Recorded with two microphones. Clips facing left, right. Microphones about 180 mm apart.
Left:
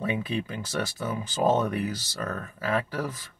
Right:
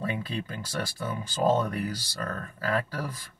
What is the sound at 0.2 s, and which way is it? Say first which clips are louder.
Speech: left 4 dB; 20° left (ahead or behind).